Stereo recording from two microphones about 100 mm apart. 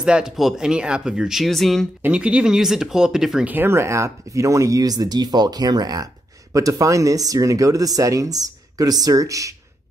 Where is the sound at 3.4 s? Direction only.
20° right (ahead or behind).